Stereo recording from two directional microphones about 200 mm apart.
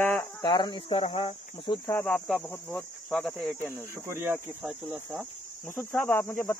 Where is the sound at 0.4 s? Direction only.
20° left (ahead or behind).